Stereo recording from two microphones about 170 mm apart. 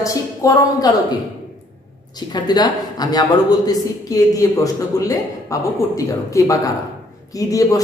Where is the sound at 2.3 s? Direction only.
25° left (ahead or behind).